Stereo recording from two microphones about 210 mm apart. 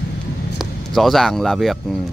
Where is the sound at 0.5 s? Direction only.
Centre (ahead or behind).